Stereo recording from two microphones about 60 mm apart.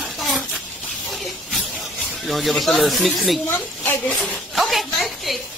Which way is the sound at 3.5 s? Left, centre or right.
Left.